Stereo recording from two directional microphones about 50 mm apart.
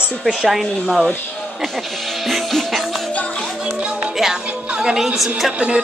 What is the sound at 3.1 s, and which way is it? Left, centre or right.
Music, left.